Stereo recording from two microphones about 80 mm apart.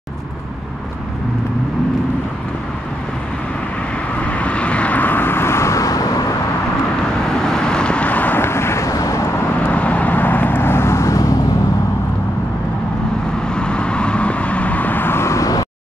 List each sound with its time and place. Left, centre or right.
4.2 s vehicle: centre; by 6.2 s left
7.4 s vehicle: centre; by 9.3 s left
9.7 s vehicle: centre; by 11.3 s left
13.5 s vehicle: centre; by 15.6 s left